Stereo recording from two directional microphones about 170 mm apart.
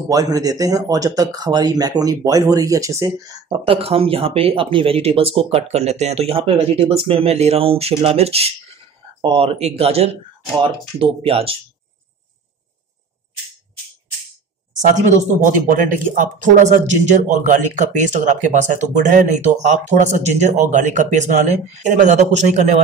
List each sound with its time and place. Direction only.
0.1 s speech: 20° right (ahead or behind)
3.6 s speech: 35° right (ahead or behind)
14.8 s speech: 45° right (ahead or behind)